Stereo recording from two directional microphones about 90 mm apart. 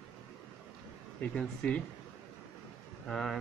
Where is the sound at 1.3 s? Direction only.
10° left (ahead or behind).